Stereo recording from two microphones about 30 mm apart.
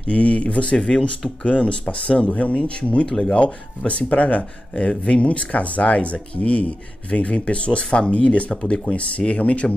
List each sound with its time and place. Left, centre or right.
0.0 s speech: left
3.1 s speech: left
3.3 s speech: left